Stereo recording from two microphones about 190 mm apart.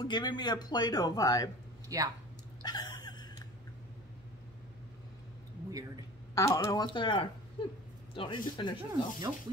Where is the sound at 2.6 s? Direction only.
20° left (ahead or behind).